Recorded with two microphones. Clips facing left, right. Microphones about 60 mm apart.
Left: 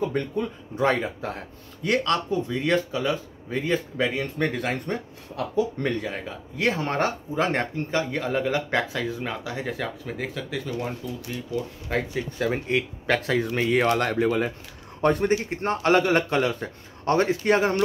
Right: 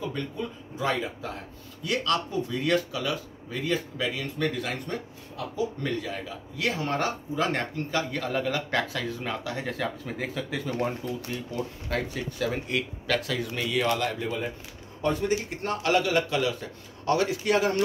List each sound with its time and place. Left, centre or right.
0.0 s speech: left
2.5 s speech: left; by 10.7 s centre
11.9 s speech: centre
12.4 s speech: left
15.3 s speech: left